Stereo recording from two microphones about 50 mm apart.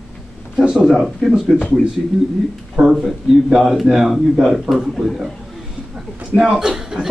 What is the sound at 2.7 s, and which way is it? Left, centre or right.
A man's voice, centre.